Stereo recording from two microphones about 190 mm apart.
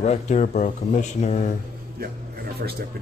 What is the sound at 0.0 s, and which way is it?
Speech, 40° left (ahead or behind).